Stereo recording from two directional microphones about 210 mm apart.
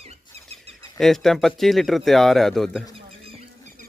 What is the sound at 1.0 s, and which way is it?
Speech, centre (ahead or behind).